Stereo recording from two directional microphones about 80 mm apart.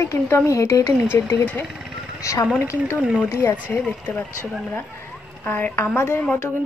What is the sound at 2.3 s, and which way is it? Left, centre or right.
Speech, left.